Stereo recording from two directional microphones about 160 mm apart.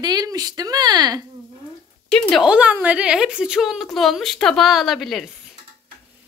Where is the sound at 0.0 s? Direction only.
25° right (ahead or behind).